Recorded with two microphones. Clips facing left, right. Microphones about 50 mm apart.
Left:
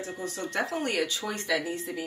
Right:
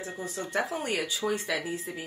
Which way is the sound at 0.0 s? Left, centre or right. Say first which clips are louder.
Left 1 dB; centre.